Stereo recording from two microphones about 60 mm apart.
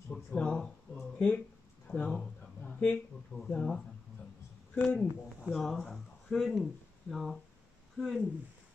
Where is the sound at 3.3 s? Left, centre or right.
Centre.